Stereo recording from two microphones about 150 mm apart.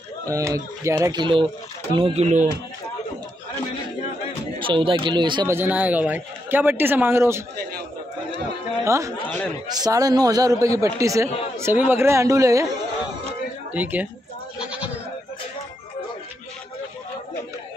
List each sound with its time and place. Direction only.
0.3 s a man's voice: 20° right (ahead or behind)
1.2 s speech: 30° right (ahead or behind)
2.0 s speech: 45° right (ahead or behind)
4.6 s speech: 35° right (ahead or behind)
5.5 s a man's voice: 10° right (ahead or behind)
8.8 s a man's voice: 20° right (ahead or behind)
13.8 s a man's voice: 10° right (ahead or behind)
14.6 s goat: 10° right (ahead or behind)